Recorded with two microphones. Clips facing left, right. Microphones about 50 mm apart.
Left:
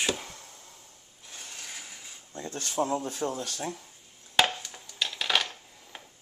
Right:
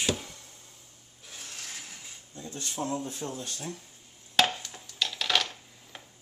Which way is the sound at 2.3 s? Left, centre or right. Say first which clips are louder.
Left 4 dB; left.